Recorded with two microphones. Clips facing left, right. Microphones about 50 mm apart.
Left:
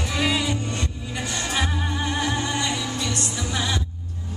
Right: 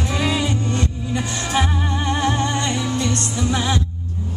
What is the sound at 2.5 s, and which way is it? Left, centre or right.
Music, right.